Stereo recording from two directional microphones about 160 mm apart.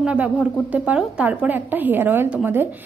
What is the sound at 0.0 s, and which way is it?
A woman's voice, 5° right (ahead or behind).